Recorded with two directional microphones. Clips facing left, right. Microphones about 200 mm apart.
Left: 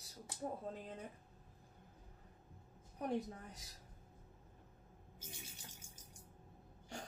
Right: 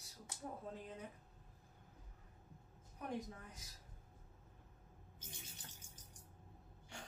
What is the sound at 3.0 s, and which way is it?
Speech, 35° left (ahead or behind).